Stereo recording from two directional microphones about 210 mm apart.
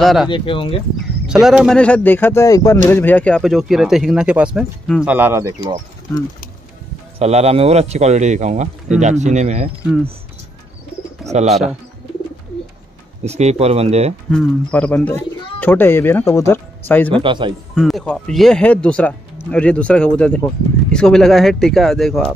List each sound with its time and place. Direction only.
0.0 s speech: centre (ahead or behind)
0.3 s speech: 25° left (ahead or behind)
1.2 s speech: 5° right (ahead or behind)
5.1 s speech: 10° right (ahead or behind)
7.2 s speech: 30° right (ahead or behind)
11.3 s speech: 30° right (ahead or behind)
13.2 s speech: 30° right (ahead or behind)
14.3 s speech: 5° left (ahead or behind)
17.1 s speech: 25° right (ahead or behind)
17.7 s speech: centre (ahead or behind)